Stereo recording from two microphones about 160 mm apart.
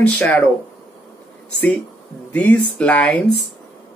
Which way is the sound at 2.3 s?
10° left (ahead or behind).